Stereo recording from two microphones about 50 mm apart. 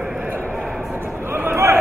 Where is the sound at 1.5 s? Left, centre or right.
Right.